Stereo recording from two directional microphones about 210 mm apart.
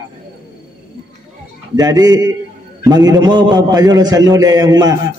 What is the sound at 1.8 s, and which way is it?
A man's voice, 20° right (ahead or behind).